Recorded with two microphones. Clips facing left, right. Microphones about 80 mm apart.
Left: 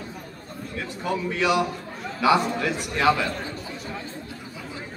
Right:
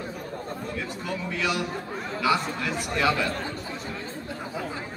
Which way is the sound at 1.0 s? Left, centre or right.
Left.